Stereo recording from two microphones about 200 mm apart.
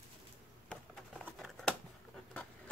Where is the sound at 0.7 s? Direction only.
Centre (ahead or behind).